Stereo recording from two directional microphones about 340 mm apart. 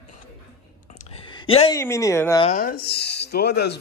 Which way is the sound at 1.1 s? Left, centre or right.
Centre.